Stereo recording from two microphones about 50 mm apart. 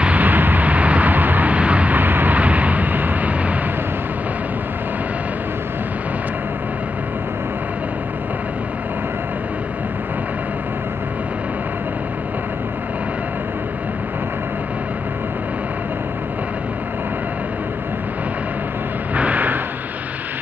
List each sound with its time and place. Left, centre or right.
0.0 s vehicle: right
2.0 s vehicle: right
19.1 s a sound: right